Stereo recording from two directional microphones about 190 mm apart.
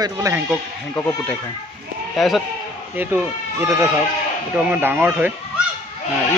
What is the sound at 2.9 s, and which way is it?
Speech, 10° right (ahead or behind).